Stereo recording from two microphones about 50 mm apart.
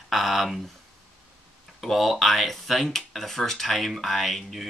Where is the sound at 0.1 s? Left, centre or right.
Centre.